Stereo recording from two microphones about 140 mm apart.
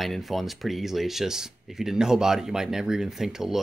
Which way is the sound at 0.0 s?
Centre (ahead or behind).